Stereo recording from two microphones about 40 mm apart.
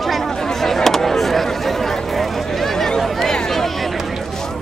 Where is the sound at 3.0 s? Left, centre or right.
Centre.